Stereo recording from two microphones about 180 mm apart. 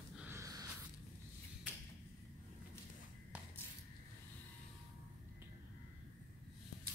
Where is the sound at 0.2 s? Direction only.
15° right (ahead or behind).